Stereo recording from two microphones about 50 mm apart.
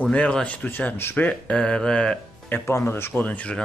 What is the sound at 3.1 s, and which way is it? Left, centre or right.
Speech, left.